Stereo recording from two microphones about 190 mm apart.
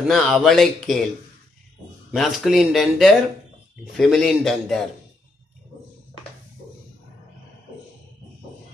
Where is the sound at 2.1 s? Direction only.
Centre (ahead or behind).